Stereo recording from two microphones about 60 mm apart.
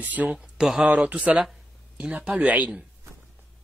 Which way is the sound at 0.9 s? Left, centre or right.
Right.